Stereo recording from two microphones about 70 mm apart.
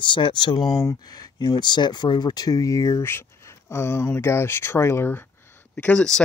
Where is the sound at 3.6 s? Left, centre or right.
Left.